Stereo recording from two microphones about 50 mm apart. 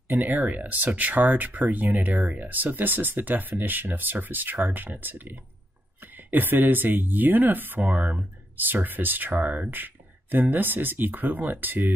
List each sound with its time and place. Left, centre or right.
0.1 s speech: right